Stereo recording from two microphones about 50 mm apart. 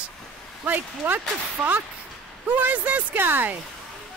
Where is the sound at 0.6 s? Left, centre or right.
Right.